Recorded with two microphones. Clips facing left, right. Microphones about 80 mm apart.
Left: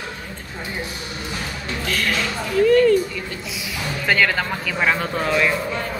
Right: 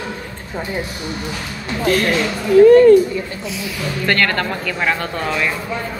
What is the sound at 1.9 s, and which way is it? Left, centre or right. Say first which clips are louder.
Speech: right 7 dB; right.